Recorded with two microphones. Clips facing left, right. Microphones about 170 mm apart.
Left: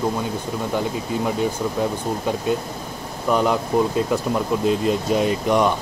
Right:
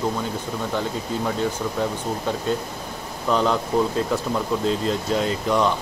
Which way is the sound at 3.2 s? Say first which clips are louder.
Left 2 dB; 10° left (ahead or behind).